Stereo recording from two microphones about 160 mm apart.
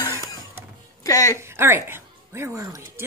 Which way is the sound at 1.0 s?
20° left (ahead or behind).